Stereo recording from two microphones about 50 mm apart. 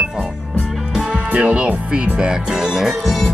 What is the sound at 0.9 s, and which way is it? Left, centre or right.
Speech, right.